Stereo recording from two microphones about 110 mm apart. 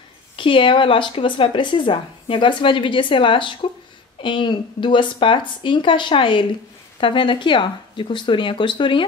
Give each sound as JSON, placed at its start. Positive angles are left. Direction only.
{"t": 0.4, "sound": "speech", "side_deg": 50}